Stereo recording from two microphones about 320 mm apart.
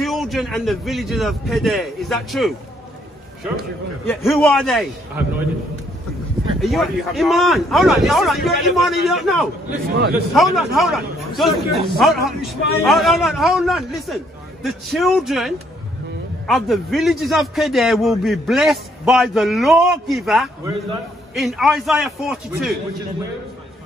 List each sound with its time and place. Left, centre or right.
0.0 s a man's voice: centre
4.1 s a man's voice: centre
6.6 s a man's voice: centre
9.7 s a man's voice: right
10.1 s a man's voice: centre